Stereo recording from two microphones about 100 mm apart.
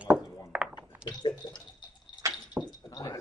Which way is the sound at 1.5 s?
45° left (ahead or behind).